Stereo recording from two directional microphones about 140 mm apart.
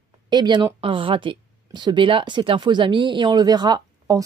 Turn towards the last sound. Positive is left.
turn(degrees=-30)  # may be behind; listen again after turning